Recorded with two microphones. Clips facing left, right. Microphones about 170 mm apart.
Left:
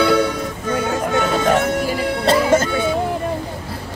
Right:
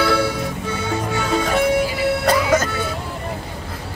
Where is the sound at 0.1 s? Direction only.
10° right (ahead or behind).